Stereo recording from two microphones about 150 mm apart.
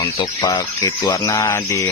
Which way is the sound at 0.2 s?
30° left (ahead or behind).